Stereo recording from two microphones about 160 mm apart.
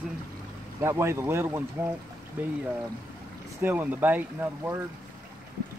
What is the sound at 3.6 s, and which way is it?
Speech, 10° right (ahead or behind).